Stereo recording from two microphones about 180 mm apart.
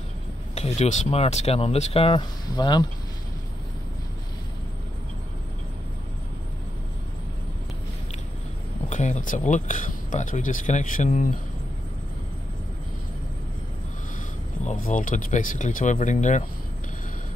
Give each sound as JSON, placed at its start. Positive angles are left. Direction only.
{"t": 0.6, "sound": "speech", "side_deg": 35}
{"t": 8.8, "sound": "speech", "side_deg": 40}
{"t": 14.7, "sound": "speech", "side_deg": 45}